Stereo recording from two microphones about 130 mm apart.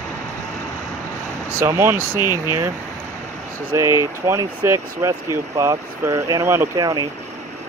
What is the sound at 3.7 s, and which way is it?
Speech, 20° right (ahead or behind).